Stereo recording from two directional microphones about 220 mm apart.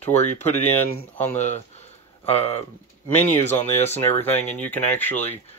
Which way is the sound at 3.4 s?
30° left (ahead or behind).